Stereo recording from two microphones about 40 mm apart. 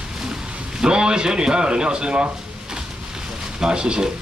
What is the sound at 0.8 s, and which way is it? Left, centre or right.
Speech, centre.